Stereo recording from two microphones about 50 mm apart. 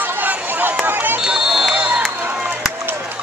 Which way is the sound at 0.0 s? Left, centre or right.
Right.